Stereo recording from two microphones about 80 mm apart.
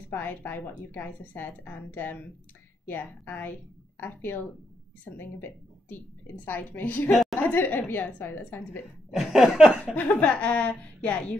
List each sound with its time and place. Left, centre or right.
0.1 s a woman's voice: left
9.1 s laughter: centre
9.9 s a woman's voice: centre